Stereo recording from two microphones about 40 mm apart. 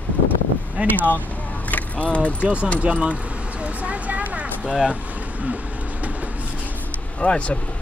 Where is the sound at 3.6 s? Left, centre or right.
Right.